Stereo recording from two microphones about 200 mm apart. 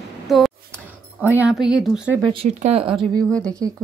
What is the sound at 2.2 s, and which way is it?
Speech, 30° right (ahead or behind).